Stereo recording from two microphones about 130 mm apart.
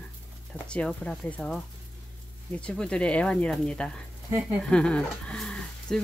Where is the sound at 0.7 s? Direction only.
5° left (ahead or behind).